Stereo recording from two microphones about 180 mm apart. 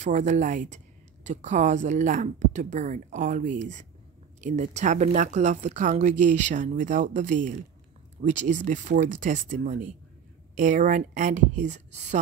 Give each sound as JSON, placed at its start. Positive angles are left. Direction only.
{"t": 0.0, "sound": "speech", "side_deg": -40}